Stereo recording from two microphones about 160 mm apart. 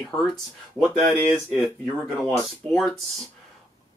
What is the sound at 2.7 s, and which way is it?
Speech, centre (ahead or behind).